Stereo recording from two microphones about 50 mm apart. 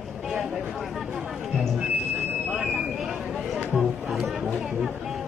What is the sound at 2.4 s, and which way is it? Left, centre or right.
Fire alarm, centre.